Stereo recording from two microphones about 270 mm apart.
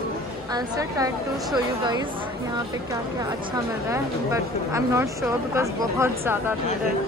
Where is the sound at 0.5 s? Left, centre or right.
Centre.